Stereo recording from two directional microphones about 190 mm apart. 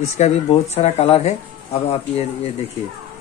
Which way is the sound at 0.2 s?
35° left (ahead or behind).